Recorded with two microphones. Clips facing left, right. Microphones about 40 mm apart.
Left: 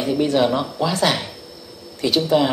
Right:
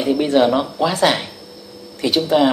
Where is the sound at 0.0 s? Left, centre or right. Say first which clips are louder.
Right 3 dB; right.